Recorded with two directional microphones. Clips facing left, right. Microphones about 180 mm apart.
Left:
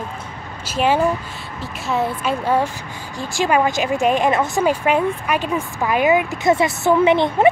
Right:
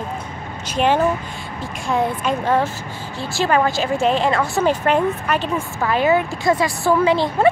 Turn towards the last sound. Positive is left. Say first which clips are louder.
# left 2 dB
turn(degrees=20)  # may be behind; listen again after turning